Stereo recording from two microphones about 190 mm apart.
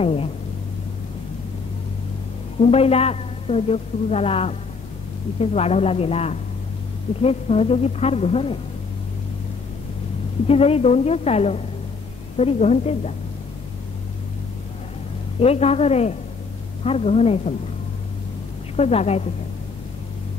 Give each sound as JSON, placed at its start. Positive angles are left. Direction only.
{"t": 0.0, "sound": "a woman's voice", "side_deg": 30}
{"t": 2.6, "sound": "a woman's voice", "side_deg": 30}
{"t": 10.4, "sound": "a woman's voice", "side_deg": 30}
{"t": 15.3, "sound": "a woman's voice", "side_deg": 30}
{"t": 18.8, "sound": "a woman's voice", "side_deg": 35}